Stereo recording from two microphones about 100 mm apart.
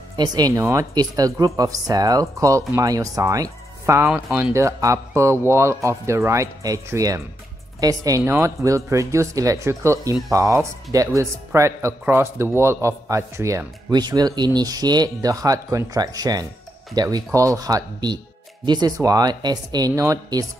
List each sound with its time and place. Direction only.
0.1 s speech: 45° right (ahead or behind)
13.9 s speech: 45° right (ahead or behind)